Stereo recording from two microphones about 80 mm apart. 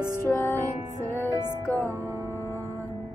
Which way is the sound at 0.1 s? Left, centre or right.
Left.